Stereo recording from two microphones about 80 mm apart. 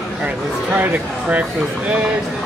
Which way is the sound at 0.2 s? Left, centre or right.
Centre.